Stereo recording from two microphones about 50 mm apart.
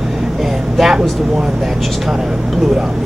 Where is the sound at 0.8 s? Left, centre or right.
Centre.